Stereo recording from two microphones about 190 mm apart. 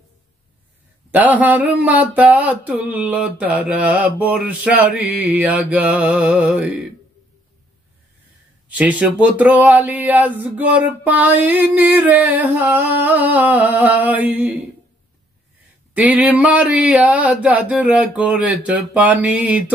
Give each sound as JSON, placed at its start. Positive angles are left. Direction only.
{"t": 1.1, "sound": "speech", "side_deg": -10}
{"t": 8.6, "sound": "speech", "side_deg": -5}
{"t": 16.0, "sound": "speech", "side_deg": -5}